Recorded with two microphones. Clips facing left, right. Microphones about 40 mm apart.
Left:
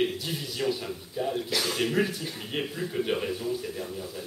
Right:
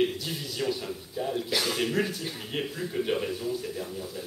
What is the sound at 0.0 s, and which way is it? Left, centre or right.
Speech, centre.